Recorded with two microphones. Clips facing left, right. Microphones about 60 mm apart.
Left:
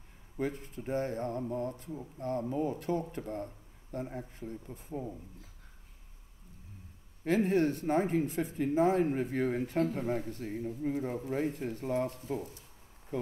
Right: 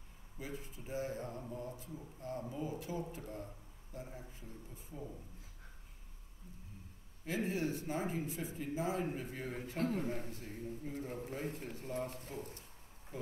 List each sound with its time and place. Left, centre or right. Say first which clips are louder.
0.4 s speech: left 11 dB; left
7.2 s speech: left 9 dB; left
13.1 s a sound: left 10 dB; left